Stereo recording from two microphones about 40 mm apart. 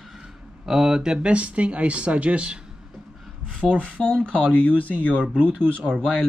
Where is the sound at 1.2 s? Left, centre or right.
Right.